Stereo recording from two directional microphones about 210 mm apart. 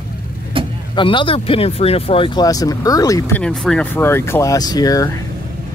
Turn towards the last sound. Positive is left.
turn(degrees=15)  # may be behind; listen again after turning